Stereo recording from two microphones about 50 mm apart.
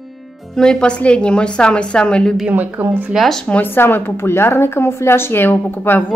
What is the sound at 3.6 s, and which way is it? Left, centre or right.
Speech, left.